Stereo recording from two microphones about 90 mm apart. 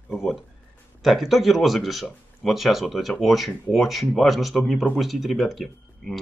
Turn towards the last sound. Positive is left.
turn(degrees=0)  # may be behind; listen again after turning